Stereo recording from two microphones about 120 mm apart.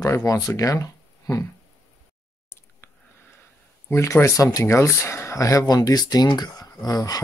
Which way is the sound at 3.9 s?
25° left (ahead or behind).